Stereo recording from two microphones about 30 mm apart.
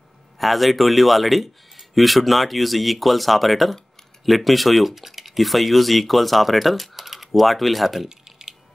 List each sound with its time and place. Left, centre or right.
0.4 s speech: centre
7.0 s typing: centre
7.3 s speech: centre
8.1 s typing: right